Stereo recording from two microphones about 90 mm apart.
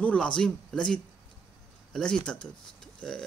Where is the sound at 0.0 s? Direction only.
10° left (ahead or behind).